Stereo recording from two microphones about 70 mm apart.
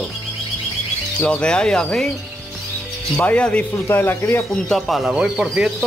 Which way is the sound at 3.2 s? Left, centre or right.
Left.